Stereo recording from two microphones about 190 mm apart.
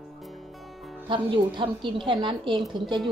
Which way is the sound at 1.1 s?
25° right (ahead or behind).